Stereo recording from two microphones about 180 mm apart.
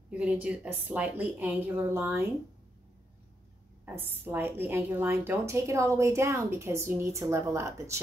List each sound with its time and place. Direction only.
0.1 s a woman's voice: 5° right (ahead or behind)
3.8 s a woman's voice: 10° right (ahead or behind)